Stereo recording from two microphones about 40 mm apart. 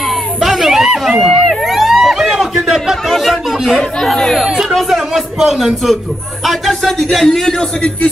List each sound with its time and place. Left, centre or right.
0.4 s a sound: centre
3.1 s a man's voice: centre
4.5 s a man's voice: centre